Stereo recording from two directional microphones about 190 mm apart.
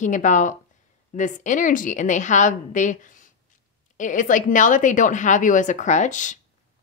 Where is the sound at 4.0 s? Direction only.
40° left (ahead or behind).